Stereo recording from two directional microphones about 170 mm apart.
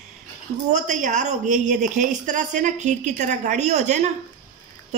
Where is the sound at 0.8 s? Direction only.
45° right (ahead or behind).